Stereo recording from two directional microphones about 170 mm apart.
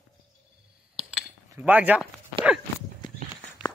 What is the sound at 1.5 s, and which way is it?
Speech, 10° right (ahead or behind).